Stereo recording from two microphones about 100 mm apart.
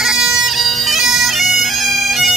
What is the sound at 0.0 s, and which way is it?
Bagpipes, 5° right (ahead or behind).